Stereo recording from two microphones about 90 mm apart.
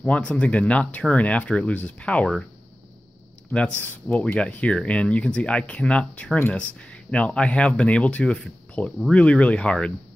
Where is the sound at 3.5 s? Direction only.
15° left (ahead or behind).